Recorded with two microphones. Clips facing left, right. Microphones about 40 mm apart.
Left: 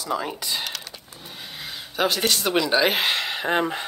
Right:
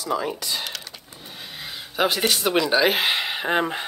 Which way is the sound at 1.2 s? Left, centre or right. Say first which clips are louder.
Even; centre.